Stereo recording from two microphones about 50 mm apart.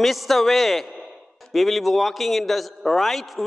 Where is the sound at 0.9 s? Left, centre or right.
Centre.